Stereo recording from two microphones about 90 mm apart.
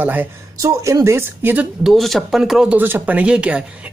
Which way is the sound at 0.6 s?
35° right (ahead or behind).